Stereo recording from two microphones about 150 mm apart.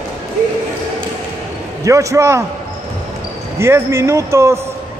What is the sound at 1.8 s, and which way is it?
Speech, 20° right (ahead or behind).